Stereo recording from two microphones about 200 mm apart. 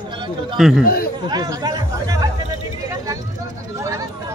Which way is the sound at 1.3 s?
20° right (ahead or behind).